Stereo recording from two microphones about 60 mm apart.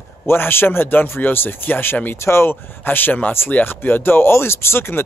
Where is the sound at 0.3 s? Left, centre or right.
Left.